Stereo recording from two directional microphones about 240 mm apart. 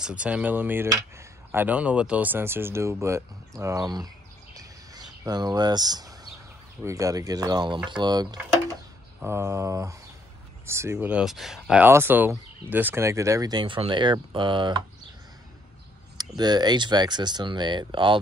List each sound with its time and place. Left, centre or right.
0.0 s speech: centre
4.6 s a sound: centre
6.8 s speech: centre
16.2 s speech: centre